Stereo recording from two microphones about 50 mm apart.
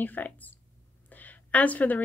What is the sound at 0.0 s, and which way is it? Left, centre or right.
Speech, left.